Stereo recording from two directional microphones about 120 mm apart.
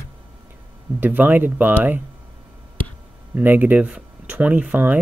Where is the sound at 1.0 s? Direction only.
15° right (ahead or behind).